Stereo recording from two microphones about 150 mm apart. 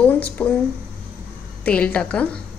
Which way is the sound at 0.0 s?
10° left (ahead or behind).